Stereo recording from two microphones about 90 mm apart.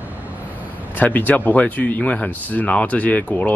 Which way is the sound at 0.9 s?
20° left (ahead or behind).